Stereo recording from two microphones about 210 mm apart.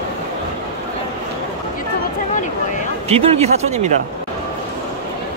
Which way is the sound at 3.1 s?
30° right (ahead or behind).